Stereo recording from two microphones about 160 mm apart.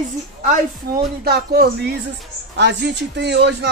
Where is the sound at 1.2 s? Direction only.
75° right (ahead or behind).